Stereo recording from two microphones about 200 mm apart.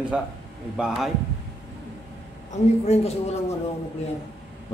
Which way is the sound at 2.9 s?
30° left (ahead or behind).